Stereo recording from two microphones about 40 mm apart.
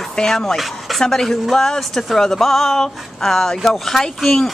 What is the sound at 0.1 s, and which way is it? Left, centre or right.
Speech, centre.